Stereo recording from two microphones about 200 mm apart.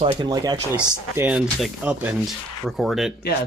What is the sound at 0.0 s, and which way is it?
Speech, 25° right (ahead or behind).